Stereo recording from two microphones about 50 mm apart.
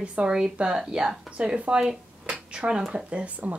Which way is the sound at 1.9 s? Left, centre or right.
Centre.